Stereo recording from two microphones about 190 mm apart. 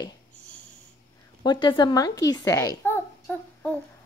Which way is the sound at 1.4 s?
25° left (ahead or behind).